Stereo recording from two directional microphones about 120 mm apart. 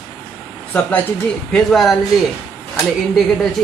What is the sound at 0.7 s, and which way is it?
Speech, 15° left (ahead or behind).